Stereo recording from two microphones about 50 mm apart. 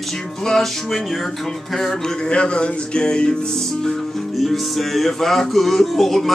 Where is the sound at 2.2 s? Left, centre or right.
Centre.